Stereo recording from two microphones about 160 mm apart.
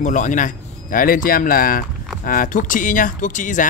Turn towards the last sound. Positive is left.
turn(degrees=55)  # may be behind; listen again after turning